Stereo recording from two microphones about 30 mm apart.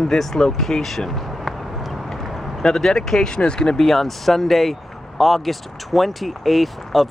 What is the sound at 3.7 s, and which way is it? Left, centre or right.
Speech, centre.